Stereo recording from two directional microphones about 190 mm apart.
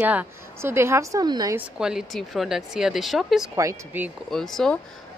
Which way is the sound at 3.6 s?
10° right (ahead or behind).